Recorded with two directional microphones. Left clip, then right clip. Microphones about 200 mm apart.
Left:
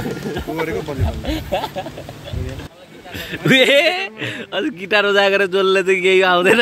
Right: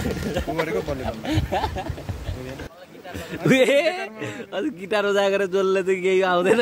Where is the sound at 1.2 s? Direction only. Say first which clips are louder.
Left 3 dB; 25° left (ahead or behind).